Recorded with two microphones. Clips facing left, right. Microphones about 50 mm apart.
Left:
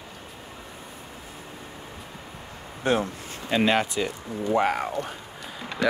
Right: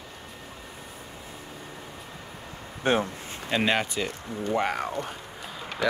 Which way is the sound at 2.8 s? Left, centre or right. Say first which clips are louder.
Even; right.